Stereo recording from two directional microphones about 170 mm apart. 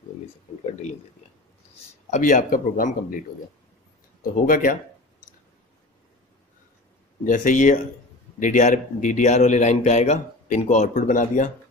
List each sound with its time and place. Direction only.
0.7 s a man's voice: 40° left (ahead or behind)
2.0 s a man's voice: 45° left (ahead or behind)
4.2 s a man's voice: 50° left (ahead or behind)
7.2 s a man's voice: 50° left (ahead or behind)